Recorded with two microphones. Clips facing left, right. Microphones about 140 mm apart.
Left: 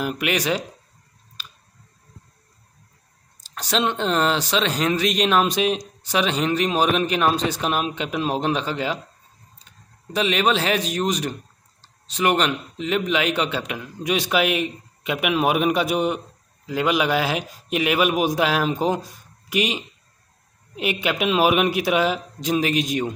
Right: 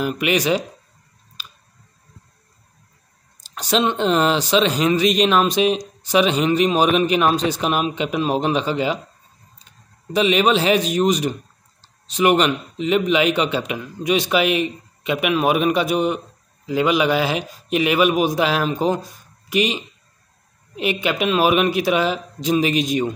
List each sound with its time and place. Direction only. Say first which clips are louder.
0.0 s speech: right 4 dB; centre (ahead or behind)
3.4 s speech: right 3 dB; centre (ahead or behind)
10.1 s speech: right 4 dB; 5° right (ahead or behind); by 16.2 s 10° left (ahead or behind)
16.6 s speech: right 3 dB; centre (ahead or behind)